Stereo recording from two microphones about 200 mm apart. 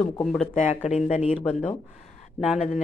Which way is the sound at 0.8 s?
35° left (ahead or behind).